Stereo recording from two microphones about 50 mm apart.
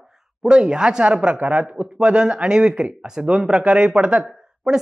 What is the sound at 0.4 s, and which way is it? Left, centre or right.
A woman's voice, centre.